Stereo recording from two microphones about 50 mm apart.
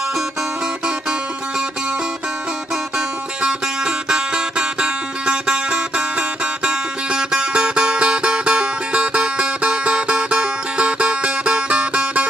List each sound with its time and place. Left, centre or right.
3.0 s music: centre